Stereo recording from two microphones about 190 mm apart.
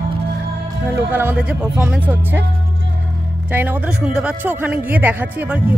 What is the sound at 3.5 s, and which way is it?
Speech, 10° right (ahead or behind).